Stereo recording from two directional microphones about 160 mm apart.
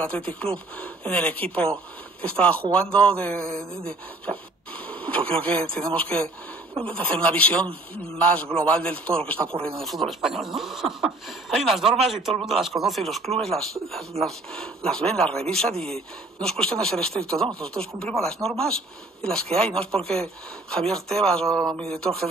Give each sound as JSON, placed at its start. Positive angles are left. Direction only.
{"t": 0.0, "sound": "a man's voice", "side_deg": 10}
{"t": 21.5, "sound": "a man's voice", "side_deg": -25}
{"t": 21.7, "sound": "speech", "side_deg": 5}